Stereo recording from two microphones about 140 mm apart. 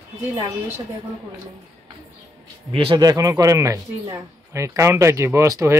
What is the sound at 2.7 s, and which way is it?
Speech, 35° right (ahead or behind).